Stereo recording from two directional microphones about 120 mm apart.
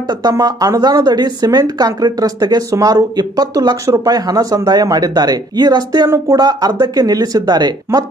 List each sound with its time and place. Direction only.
0.2 s a woman's voice: 35° right (ahead or behind)